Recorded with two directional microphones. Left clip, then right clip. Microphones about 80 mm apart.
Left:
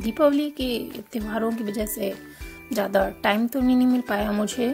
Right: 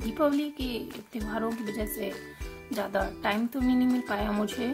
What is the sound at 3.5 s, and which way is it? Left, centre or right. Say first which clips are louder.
A child's voice: left 6 dB; left.